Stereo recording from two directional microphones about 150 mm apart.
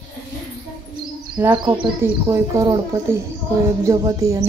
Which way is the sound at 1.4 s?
20° right (ahead or behind).